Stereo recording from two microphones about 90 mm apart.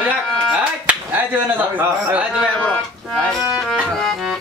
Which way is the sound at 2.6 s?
10° left (ahead or behind).